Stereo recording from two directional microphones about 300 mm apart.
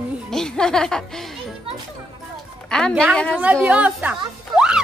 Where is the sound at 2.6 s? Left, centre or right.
Centre.